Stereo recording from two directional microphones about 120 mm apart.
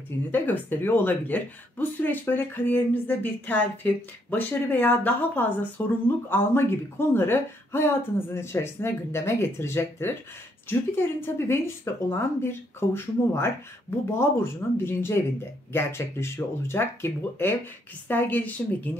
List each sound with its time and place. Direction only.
0.3 s speech: 15° left (ahead or behind)